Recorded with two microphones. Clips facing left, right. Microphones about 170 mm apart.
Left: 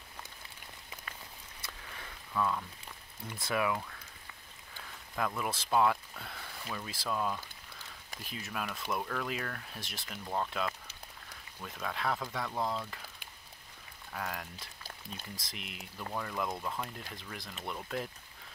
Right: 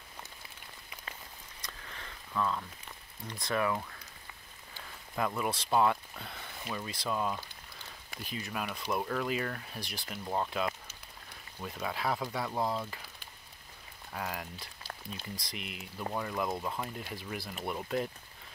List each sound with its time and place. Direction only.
1.6 s a sound: 5° left (ahead or behind)
3.3 s speech: 5° left (ahead or behind)
5.1 s speech: 5° right (ahead or behind)
14.1 s speech: 5° right (ahead or behind)